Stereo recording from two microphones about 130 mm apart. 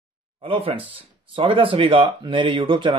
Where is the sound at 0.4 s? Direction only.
45° right (ahead or behind).